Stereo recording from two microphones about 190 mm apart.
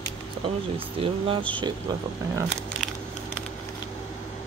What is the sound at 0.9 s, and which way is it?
Speech, 30° right (ahead or behind).